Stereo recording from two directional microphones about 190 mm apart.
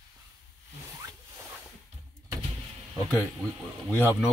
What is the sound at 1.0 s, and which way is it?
Zipper, 15° right (ahead or behind).